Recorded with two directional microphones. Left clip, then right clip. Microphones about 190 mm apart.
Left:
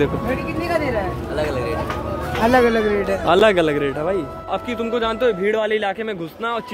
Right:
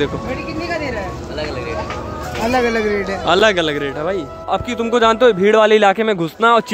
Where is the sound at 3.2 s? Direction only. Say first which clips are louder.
Right 1 dB; 5° left (ahead or behind).